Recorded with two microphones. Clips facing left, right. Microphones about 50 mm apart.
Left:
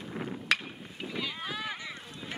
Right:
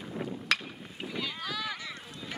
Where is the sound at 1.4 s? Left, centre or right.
Left.